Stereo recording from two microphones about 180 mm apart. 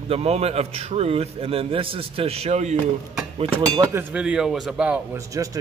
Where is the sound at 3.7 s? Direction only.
20° right (ahead or behind).